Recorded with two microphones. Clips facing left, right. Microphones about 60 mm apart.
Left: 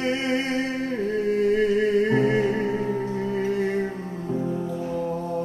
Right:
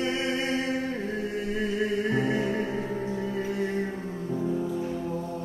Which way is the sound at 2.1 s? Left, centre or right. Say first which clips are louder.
Left 5 dB; left.